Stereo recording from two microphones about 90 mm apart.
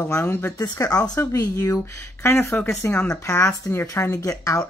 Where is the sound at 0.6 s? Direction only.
40° left (ahead or behind).